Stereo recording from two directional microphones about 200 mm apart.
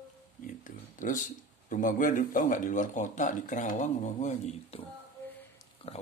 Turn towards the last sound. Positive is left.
turn(degrees=25)  # may be behind; listen again after turning